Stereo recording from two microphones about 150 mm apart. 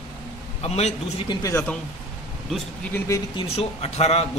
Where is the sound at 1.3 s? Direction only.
25° left (ahead or behind).